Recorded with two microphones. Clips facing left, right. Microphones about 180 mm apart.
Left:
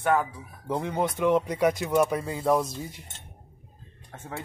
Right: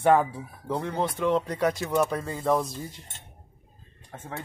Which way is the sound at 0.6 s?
10° left (ahead or behind).